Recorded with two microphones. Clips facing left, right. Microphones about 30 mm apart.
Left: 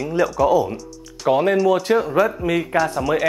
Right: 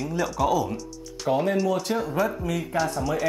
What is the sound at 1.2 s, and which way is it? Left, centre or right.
Speech, left.